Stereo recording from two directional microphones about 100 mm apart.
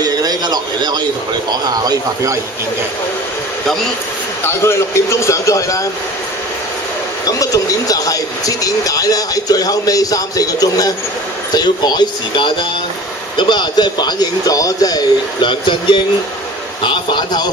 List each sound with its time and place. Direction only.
0.0 s a man's voice: 40° right (ahead or behind)
4.5 s speech: 25° left (ahead or behind)
7.2 s speech: 35° left (ahead or behind)